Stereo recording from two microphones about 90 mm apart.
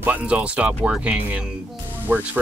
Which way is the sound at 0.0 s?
15° right (ahead or behind).